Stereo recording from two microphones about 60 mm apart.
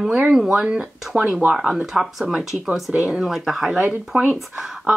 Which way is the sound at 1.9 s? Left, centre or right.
Centre.